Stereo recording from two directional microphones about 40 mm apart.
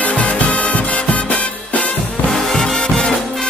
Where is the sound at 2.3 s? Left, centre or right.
Centre.